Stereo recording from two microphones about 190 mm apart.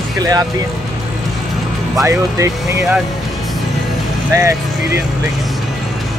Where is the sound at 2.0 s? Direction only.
15° right (ahead or behind).